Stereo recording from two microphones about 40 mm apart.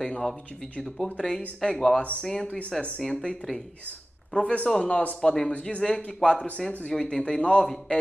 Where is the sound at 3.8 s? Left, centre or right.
Left.